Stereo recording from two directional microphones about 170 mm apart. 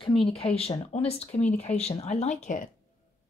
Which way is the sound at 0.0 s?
30° left (ahead or behind).